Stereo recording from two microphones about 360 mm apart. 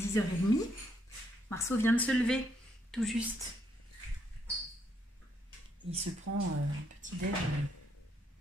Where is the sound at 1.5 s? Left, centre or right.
Centre.